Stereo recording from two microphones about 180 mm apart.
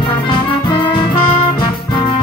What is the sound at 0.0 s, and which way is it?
Music, 25° left (ahead or behind).